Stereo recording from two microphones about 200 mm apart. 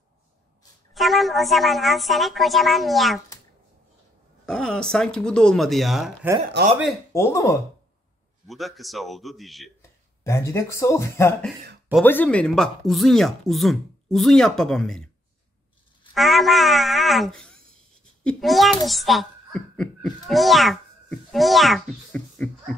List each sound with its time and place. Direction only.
0.9 s speech: centre (ahead or behind)
4.5 s speech: 5° left (ahead or behind)
6.6 s speech: 55° right (ahead or behind)
7.1 s speech: 15° left (ahead or behind)
8.5 s speech: centre (ahead or behind)
9.8 s speech: 15° left (ahead or behind)
16.2 s a child's voice: centre (ahead or behind)